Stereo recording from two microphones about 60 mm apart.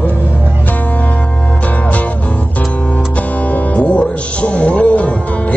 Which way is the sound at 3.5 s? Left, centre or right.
Left.